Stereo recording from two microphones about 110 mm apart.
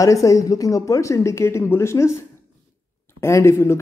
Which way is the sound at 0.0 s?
30° left (ahead or behind).